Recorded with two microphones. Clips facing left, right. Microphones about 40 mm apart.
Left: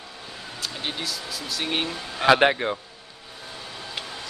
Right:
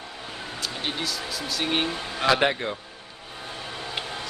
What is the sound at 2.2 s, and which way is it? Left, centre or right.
Speech, left.